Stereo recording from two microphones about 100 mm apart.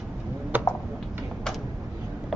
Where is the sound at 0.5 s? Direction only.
20° right (ahead or behind).